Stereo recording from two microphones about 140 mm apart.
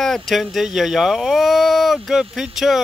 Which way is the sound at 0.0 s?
Centre (ahead or behind).